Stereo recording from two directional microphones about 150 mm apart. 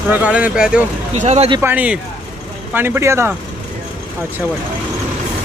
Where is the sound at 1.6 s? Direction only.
10° right (ahead or behind).